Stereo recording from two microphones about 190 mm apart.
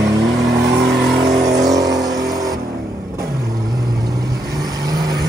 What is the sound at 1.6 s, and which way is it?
Vehicle, 20° right (ahead or behind).